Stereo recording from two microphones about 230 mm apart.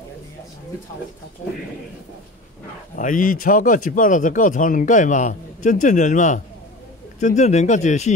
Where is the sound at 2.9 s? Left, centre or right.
Left.